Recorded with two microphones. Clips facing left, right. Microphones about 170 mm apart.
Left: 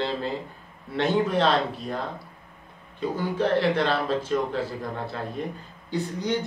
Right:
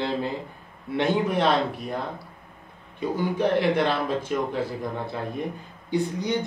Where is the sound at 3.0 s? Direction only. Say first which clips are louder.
Right 1 dB; 15° right (ahead or behind).